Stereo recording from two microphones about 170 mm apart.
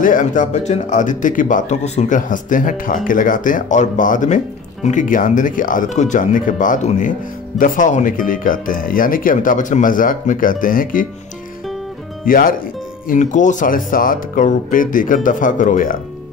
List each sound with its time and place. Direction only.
0.0 s speech: 50° left (ahead or behind)
12.3 s speech: 55° left (ahead or behind)